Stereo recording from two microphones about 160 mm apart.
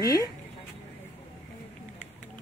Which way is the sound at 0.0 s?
20° left (ahead or behind).